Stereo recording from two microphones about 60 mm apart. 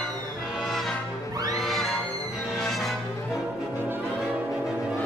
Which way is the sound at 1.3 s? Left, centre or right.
Right.